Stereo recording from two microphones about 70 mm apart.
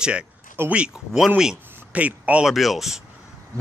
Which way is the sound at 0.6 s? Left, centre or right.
Right.